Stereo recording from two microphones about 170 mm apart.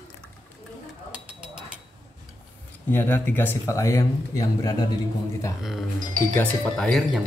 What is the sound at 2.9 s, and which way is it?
Speech, 10° left (ahead or behind).